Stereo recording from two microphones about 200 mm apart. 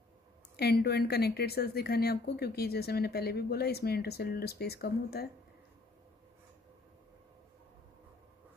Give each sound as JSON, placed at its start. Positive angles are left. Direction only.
{"t": 0.6, "sound": "speech", "side_deg": 55}